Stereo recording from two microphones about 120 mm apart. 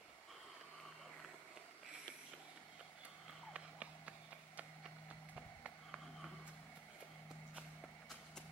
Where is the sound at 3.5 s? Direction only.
10° right (ahead or behind).